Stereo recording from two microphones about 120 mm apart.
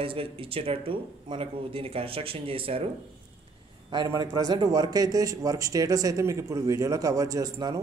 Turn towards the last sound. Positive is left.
turn(degrees=-25)  # may be behind; listen again after turning